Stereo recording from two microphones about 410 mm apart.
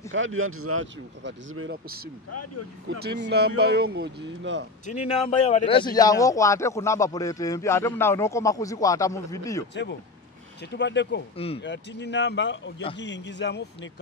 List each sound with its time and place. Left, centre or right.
0.1 s speech: right
2.3 s speech: left
3.3 s speech: right
4.8 s speech: centre
10.6 s speech: left
11.3 s speech: centre
11.6 s speech: left